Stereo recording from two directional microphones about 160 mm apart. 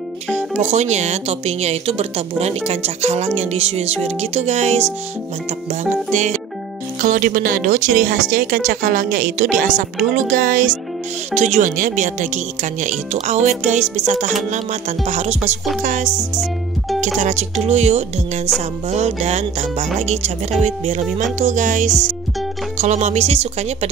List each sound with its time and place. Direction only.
0.6 s speech: 45° right (ahead or behind)
11.3 s speech: 45° right (ahead or behind)